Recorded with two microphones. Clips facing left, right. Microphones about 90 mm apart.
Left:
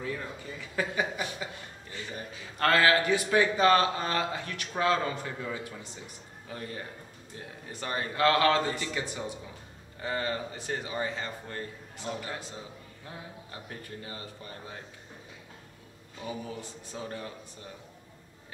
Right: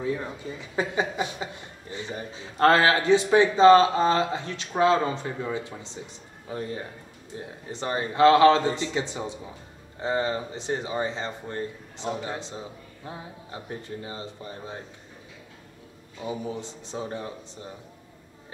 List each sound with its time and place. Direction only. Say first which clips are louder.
0.0 s a man's voice: right 6 dB; 20° right (ahead or behind)
16.2 s a man's voice: right 6 dB; 20° right (ahead or behind)